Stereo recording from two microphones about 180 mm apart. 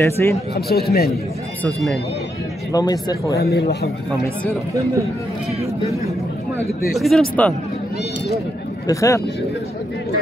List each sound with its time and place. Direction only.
0.0 s speech: 15° left (ahead or behind)
0.6 s a man's voice: 60° left (ahead or behind)
1.6 s speech: 10° left (ahead or behind)
2.7 s speech: 20° left (ahead or behind)
3.3 s a man's voice: 65° left (ahead or behind)
7.0 s speech: centre (ahead or behind)
8.8 s speech: 20° left (ahead or behind)